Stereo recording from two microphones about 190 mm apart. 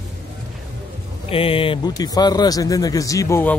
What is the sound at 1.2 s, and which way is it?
A man's voice, 30° left (ahead or behind).